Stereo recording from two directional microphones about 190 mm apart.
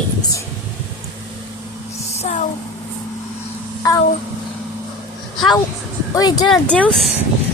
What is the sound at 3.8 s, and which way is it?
Speech, 20° left (ahead or behind).